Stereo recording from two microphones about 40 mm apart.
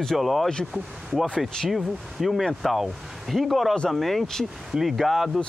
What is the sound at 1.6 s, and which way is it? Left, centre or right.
Speech, centre.